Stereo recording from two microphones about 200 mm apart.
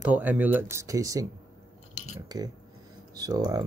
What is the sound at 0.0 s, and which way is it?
Speech, 10° right (ahead or behind).